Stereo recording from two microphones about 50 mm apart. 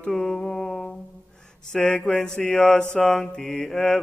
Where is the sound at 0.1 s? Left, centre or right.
Centre.